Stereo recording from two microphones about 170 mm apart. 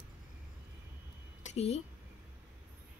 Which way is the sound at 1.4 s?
40° left (ahead or behind).